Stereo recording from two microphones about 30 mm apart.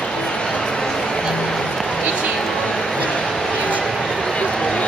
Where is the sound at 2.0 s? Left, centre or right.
Right.